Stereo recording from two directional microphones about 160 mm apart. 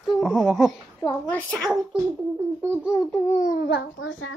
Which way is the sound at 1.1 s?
10° left (ahead or behind).